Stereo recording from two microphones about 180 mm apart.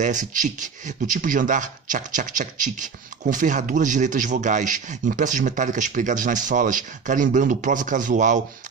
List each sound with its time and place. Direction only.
0.0 s speech: 45° right (ahead or behind)